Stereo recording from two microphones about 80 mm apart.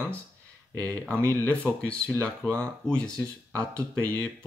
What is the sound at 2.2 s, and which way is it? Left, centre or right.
Speech, centre.